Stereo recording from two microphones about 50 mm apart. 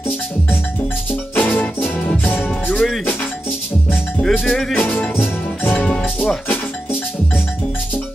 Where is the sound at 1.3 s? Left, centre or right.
Left.